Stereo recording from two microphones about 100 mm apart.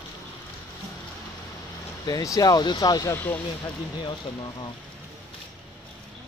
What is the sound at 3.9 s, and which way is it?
Speech, 45° left (ahead or behind).